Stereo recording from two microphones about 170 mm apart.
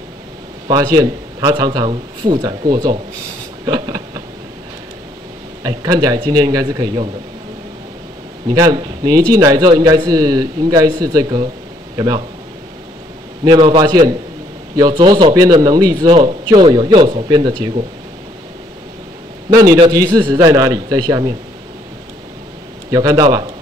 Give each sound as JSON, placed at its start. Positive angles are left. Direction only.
{"t": 0.7, "sound": "a man's voice", "side_deg": -25}
{"t": 3.6, "sound": "a sound", "side_deg": -25}
{"t": 5.6, "sound": "a man's voice", "side_deg": -20}
{"t": 8.5, "sound": "a man's voice", "side_deg": -25}
{"t": 13.4, "sound": "a man's voice", "side_deg": -30}
{"t": 19.5, "sound": "a man's voice", "side_deg": -20}
{"t": 22.8, "sound": "a man's voice", "side_deg": -20}